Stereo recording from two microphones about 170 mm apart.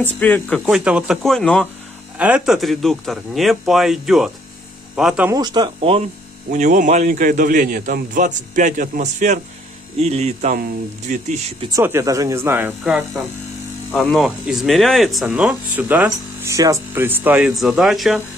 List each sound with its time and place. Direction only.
0.2 s speech: 5° left (ahead or behind)
0.7 s speech: 5° right (ahead or behind)
2.1 s speech: 5° right (ahead or behind)
5.3 s speech: 25° right (ahead or behind)
6.5 s a man's voice: 45° right (ahead or behind)
11.7 s speech: 15° right (ahead or behind)
13.9 s speech: centre (ahead or behind)